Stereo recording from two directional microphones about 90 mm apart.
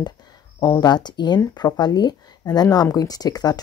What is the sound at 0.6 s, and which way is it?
Speech, 45° left (ahead or behind).